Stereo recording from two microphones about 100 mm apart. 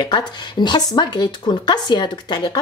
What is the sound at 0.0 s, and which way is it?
Speech, 45° left (ahead or behind).